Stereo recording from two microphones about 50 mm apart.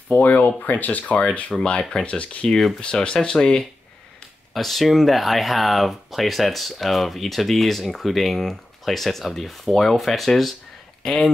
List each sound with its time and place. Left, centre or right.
0.2 s speech: left
1.6 s speech: centre
4.6 s speech: centre